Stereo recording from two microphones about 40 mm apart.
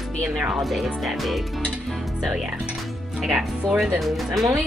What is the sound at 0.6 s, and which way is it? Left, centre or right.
Speech, centre.